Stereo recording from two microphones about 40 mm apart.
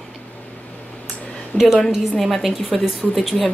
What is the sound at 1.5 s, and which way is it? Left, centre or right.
Speech, left.